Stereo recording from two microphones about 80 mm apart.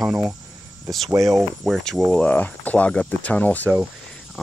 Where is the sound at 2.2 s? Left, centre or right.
Centre.